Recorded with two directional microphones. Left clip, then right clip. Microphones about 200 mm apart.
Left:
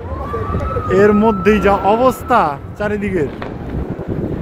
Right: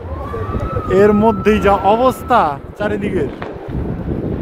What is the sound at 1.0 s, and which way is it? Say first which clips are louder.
Speech: even; 15° right (ahead or behind).